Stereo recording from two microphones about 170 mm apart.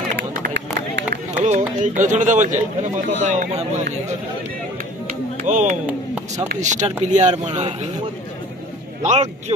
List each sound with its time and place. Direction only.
0.3 s run: 80° right
1.4 s speech: 45° right (ahead or behind)
5.0 s music: 50° right (ahead or behind)
6.5 s speech: 45° right (ahead or behind)
9.0 s speech: 40° right (ahead or behind)